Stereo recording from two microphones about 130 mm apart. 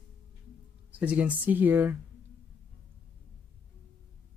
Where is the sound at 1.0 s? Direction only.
10° right (ahead or behind).